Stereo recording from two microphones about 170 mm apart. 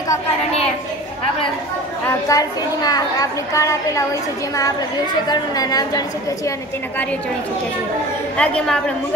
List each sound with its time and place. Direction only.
2.2 s a woman's voice: 20° left (ahead or behind)
8.4 s a woman's voice: 5° left (ahead or behind)